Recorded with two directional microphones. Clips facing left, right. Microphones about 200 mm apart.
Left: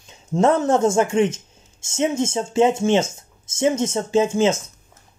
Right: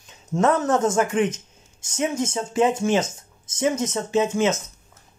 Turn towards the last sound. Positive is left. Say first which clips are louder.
# left 3 dB
turn(degrees=30)  # may be behind; listen again after turning